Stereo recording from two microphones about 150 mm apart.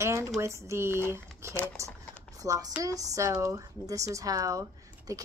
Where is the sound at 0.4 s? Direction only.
20° right (ahead or behind).